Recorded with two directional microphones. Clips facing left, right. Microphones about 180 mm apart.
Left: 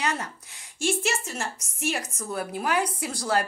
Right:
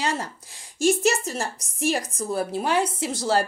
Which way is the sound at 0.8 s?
40° right (ahead or behind).